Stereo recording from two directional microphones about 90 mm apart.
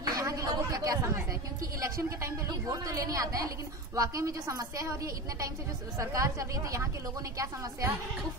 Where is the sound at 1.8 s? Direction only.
35° right (ahead or behind).